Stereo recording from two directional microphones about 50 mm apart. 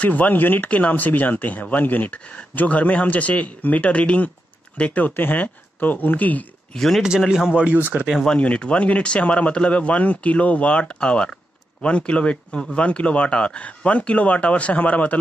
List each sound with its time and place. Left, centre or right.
0.0 s speech: left
2.2 s speech: left
5.0 s speech: left
6.7 s speech: centre
7.2 s speech: centre
7.5 s speech: right
8.4 s speech: left